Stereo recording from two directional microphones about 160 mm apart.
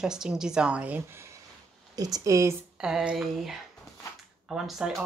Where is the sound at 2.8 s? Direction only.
5° right (ahead or behind).